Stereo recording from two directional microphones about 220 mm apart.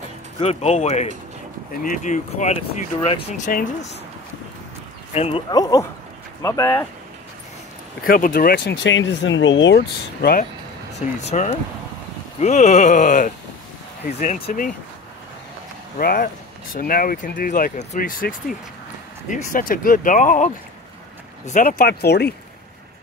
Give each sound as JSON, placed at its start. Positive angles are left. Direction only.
{"t": 0.4, "sound": "speech", "side_deg": 30}
{"t": 5.1, "sound": "speech", "side_deg": 25}
{"t": 8.0, "sound": "speech", "side_deg": 40}
{"t": 11.0, "sound": "speech", "side_deg": 30}
{"t": 16.0, "sound": "speech", "side_deg": 40}